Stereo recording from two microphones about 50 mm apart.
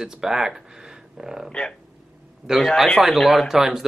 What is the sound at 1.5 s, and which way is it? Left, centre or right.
Speech, centre.